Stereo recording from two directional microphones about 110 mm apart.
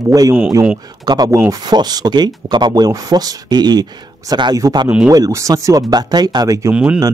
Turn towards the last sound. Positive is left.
turn(degrees=-10)  # may be behind; listen again after turning